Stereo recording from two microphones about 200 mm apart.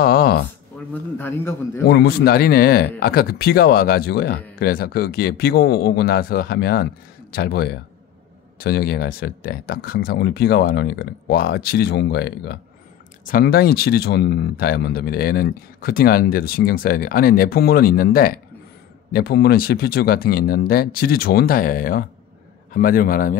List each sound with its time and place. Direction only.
0.0 s a sound: 50° left (ahead or behind)
1.1 s a man's voice: 10° left (ahead or behind)
1.9 s speech: 50° left (ahead or behind)
13.2 s speech: 45° left (ahead or behind)